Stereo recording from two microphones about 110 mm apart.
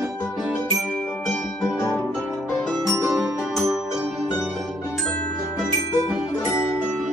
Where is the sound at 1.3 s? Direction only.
5° left (ahead or behind).